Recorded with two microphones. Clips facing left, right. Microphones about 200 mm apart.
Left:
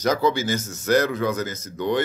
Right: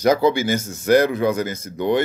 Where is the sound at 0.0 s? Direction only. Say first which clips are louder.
Right 4 dB; 10° right (ahead or behind).